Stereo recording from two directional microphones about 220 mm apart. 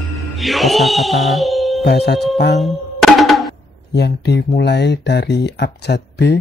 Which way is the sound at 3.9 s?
50° left (ahead or behind).